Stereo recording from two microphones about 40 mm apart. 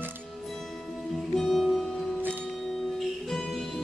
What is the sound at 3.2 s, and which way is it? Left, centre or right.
Music, centre.